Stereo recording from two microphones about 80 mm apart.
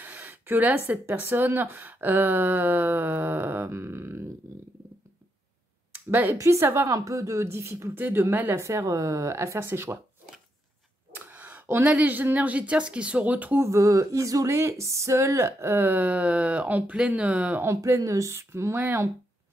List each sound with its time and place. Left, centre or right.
0.0 s a sound: right
1.1 s speech: right
6.0 s speech: right
9.6 s speech: right
11.1 s speech: right
13.6 s speech: right
14.5 s speech: right; by 17.6 s centre
17.6 s speech: right